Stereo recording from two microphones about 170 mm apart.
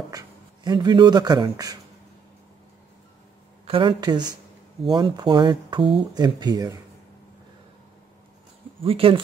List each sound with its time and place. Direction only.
0.7 s speech: 25° right (ahead or behind)
3.6 s speech: 30° right (ahead or behind)
8.8 s speech: 35° right (ahead or behind)